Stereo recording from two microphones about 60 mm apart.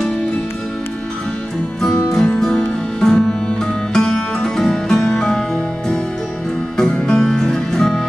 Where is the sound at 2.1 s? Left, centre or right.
Centre.